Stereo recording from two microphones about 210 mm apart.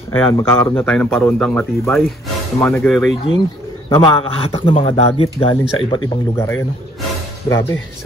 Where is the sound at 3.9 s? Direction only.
25° left (ahead or behind).